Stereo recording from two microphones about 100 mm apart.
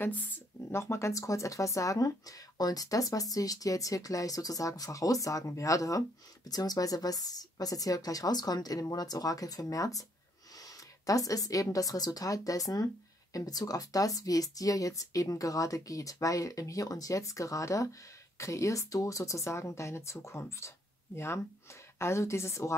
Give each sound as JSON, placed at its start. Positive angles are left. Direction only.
{"t": 0.7, "sound": "speech", "side_deg": 25}